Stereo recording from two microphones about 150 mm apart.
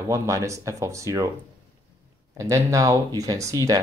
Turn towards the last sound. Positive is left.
turn(degrees=-25)  # may be behind; listen again after turning